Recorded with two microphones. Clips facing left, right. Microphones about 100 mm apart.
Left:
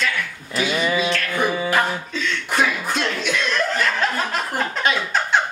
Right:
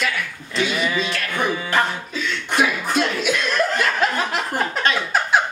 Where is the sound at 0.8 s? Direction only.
15° left (ahead or behind).